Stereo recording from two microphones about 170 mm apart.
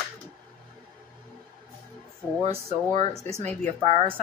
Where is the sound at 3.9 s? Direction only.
35° right (ahead or behind).